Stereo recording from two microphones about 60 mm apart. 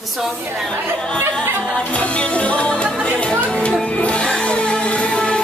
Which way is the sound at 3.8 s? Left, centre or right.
Left.